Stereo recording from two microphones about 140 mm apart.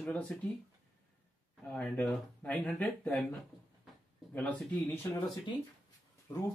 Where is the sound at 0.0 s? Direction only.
10° left (ahead or behind).